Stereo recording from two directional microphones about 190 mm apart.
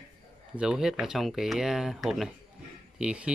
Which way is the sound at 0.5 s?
5° right (ahead or behind).